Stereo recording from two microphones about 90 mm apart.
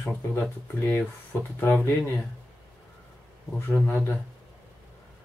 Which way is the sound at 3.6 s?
25° left (ahead or behind).